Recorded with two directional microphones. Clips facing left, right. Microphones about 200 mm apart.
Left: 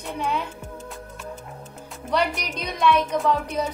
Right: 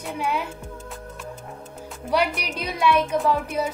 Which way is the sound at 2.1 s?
10° right (ahead or behind).